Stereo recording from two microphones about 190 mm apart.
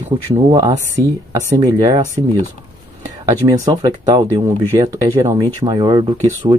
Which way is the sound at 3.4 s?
20° right (ahead or behind).